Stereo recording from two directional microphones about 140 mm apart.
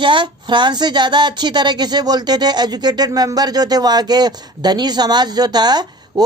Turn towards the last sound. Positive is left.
turn(degrees=-30)  # may be behind; listen again after turning